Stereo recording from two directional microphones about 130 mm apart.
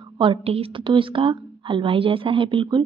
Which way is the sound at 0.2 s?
45° right (ahead or behind).